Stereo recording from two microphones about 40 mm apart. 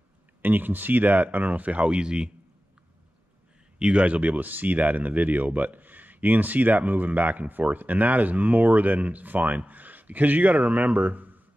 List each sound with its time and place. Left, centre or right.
0.4 s speech: right
3.8 s speech: right